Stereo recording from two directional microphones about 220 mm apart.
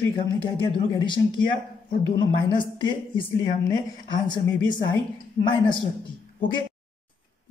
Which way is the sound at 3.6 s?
20° left (ahead or behind).